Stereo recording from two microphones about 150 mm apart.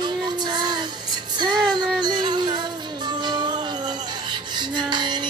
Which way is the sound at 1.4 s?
30° right (ahead or behind).